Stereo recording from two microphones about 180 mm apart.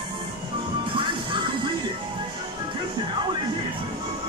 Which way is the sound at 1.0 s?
25° right (ahead or behind).